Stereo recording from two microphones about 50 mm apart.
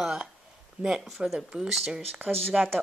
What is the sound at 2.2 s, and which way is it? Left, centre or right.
Speech, right.